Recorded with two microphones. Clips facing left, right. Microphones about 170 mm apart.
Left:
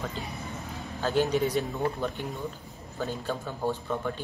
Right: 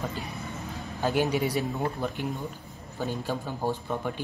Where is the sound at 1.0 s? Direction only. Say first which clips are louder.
Even; 15° right (ahead or behind).